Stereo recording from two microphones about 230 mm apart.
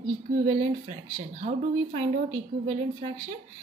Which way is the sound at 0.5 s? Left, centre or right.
Right.